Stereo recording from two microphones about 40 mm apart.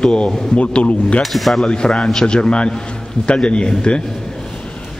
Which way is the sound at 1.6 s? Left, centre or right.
Left.